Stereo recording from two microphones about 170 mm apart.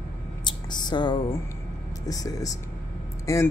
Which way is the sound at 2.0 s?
20° left (ahead or behind).